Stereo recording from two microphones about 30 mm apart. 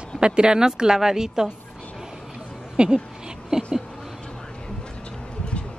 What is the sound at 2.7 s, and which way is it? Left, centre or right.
Speech, right.